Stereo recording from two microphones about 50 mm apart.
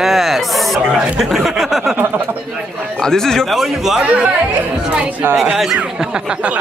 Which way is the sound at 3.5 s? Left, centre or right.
Centre.